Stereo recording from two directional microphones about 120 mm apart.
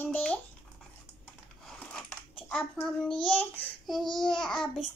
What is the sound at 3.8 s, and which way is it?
Speech, centre (ahead or behind).